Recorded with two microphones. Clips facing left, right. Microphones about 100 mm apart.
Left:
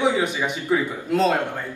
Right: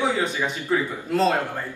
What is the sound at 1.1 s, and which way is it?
Mantra, 5° left (ahead or behind).